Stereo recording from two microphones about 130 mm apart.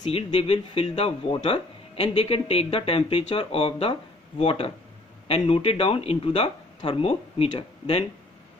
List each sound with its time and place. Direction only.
0.1 s speech: 45° left (ahead or behind)